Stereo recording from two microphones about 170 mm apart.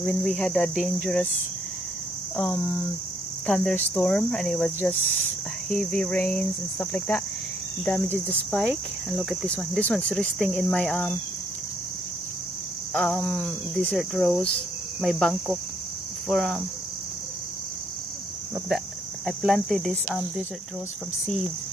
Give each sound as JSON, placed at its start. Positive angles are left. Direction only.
{"t": 0.0, "sound": "cricket", "side_deg": 5}
{"t": 2.3, "sound": "cricket", "side_deg": 0}
{"t": 12.9, "sound": "a sound", "side_deg": 5}
{"t": 13.8, "sound": "cricket", "side_deg": 5}
{"t": 19.2, "sound": "cricket", "side_deg": 0}